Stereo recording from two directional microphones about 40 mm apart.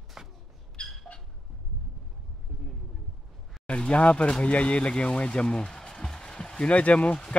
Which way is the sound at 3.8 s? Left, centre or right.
Left.